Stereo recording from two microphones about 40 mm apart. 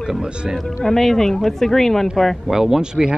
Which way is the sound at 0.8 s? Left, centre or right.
Centre.